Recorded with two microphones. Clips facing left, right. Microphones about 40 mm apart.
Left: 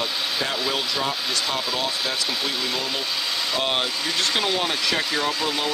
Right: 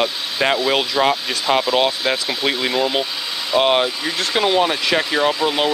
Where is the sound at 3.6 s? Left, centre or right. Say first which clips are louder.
Right 10 dB; right.